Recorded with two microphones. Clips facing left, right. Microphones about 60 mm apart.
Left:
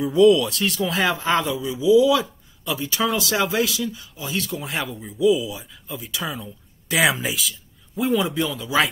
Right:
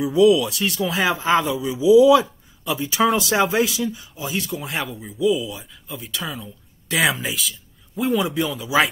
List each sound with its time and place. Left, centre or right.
0.0 s speech: centre
2.0 s speech: right
4.3 s speech: centre